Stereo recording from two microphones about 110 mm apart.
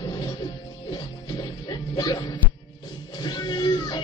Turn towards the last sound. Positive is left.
turn(degrees=45)  # may be behind; listen again after turning